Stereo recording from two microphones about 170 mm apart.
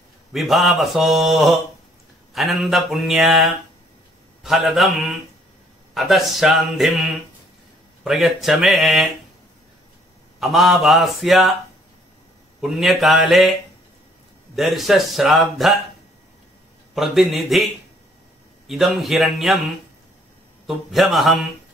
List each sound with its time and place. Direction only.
0.3 s speech: centre (ahead or behind)
8.0 s speech: centre (ahead or behind)
10.4 s speech: centre (ahead or behind)
12.6 s speech: centre (ahead or behind)
16.9 s speech: centre (ahead or behind)
18.7 s speech: centre (ahead or behind)
20.6 s speech: centre (ahead or behind)